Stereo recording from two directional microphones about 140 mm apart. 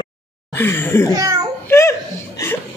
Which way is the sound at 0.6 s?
15° left (ahead or behind).